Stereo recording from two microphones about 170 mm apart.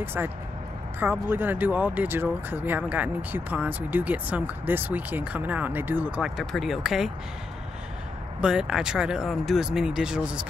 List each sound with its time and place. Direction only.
0.0 s speech: 10° right (ahead or behind)
8.4 s speech: 5° right (ahead or behind)